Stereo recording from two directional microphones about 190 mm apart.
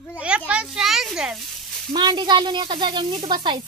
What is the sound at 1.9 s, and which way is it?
Speech, 25° right (ahead or behind).